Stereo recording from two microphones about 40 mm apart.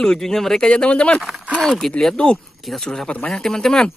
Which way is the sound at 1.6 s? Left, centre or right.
Centre.